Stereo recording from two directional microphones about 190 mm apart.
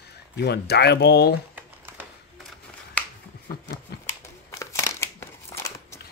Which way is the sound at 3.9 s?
55° left (ahead or behind).